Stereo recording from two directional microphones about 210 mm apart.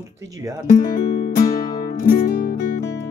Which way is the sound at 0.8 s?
40° left (ahead or behind).